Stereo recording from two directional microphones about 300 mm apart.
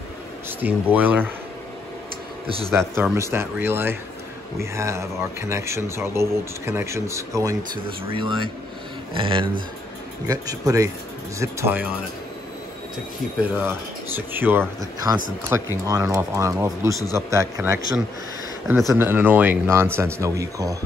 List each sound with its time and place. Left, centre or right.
0.6 s speech: centre
3.0 s speech: centre
13.4 s speech: centre